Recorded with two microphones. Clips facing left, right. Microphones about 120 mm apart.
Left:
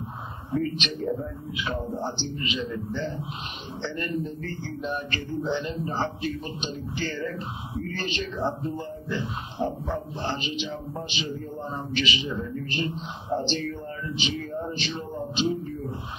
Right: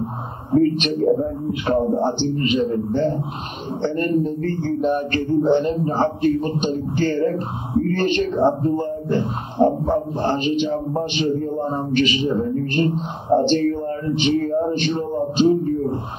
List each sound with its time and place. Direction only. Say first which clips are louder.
0.5 s speech: right 11 dB; 40° right (ahead or behind)